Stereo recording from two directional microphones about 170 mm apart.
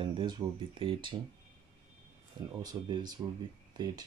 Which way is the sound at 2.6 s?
25° right (ahead or behind).